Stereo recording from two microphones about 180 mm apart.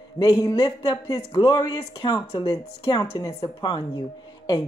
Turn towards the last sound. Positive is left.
turn(degrees=25)  # may be behind; listen again after turning